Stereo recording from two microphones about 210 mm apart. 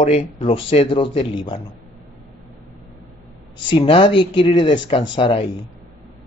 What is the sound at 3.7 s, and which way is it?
Speech, 25° left (ahead or behind).